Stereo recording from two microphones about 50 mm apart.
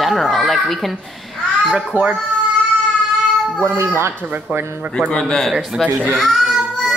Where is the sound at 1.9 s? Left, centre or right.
Right.